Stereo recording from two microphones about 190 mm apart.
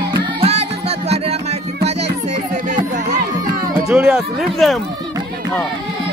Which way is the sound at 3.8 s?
5° right (ahead or behind).